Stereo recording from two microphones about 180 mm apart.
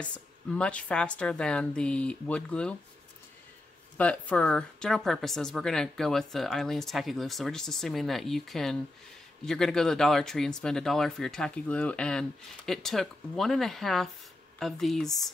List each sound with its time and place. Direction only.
0.0 s speech: 5° left (ahead or behind)
4.0 s speech: 5° left (ahead or behind)